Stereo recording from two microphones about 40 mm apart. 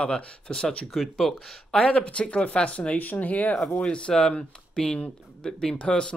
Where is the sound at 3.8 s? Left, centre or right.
Left.